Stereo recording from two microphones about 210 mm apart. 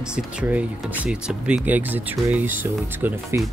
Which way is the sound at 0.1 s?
5° right (ahead or behind).